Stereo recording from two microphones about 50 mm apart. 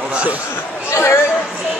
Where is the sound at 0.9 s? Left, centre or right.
Left.